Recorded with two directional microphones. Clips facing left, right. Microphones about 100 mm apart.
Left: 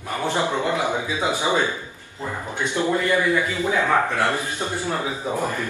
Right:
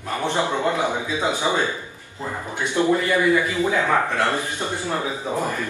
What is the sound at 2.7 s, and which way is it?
A man's voice, 15° right (ahead or behind).